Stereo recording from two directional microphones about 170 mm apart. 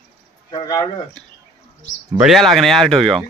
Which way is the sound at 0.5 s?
25° left (ahead or behind).